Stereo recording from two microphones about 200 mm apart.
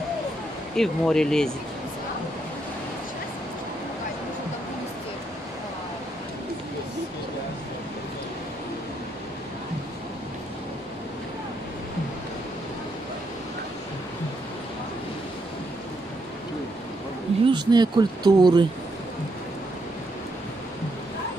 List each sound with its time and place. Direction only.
0.7 s speech: 5° left (ahead or behind)
17.5 s speech: 20° right (ahead or behind)